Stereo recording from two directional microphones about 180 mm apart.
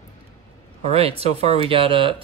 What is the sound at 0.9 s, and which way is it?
Speech, 35° right (ahead or behind).